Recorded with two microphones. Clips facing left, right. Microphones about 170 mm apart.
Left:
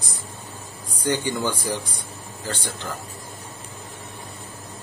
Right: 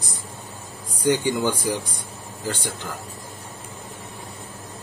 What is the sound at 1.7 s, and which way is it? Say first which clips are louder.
Speech: right 2 dB; 15° right (ahead or behind).